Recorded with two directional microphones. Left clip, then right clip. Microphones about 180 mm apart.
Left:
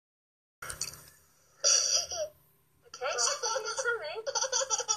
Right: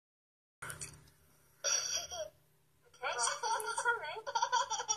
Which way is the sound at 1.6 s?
25° left (ahead or behind).